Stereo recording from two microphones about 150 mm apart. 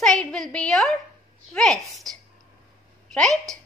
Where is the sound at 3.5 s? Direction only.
20° right (ahead or behind).